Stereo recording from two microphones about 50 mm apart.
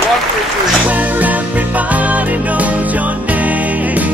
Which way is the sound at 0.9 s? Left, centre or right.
Right.